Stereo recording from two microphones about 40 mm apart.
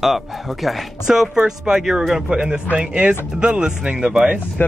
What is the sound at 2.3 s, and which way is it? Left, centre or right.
Speech, right.